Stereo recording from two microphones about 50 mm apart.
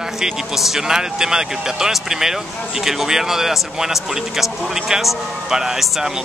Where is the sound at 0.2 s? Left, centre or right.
Centre.